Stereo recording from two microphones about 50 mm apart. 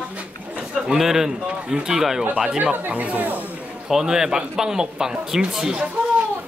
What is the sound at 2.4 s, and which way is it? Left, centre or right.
Speech, right.